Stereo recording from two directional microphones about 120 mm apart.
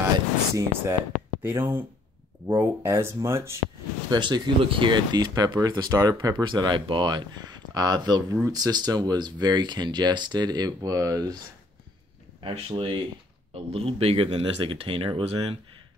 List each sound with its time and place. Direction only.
0.6 s speech: 20° right (ahead or behind)
4.1 s speech: 40° right (ahead or behind)
12.4 s speech: 50° right (ahead or behind)